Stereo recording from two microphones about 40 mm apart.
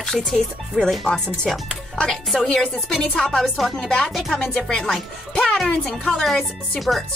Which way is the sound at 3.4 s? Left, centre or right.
Centre.